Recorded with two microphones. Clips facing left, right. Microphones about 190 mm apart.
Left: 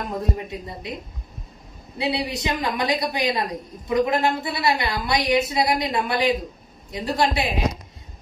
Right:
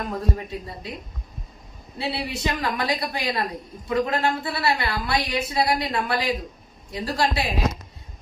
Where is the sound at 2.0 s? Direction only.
20° left (ahead or behind).